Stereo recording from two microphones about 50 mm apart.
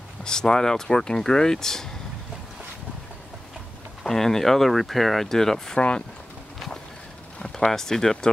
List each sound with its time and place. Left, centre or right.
0.2 s speech: centre
4.0 s speech: centre
5.8 s speech: left
7.3 s speech: centre